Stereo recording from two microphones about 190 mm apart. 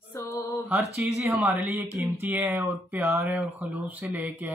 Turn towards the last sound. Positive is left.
turn(degrees=-10)  # may be behind; listen again after turning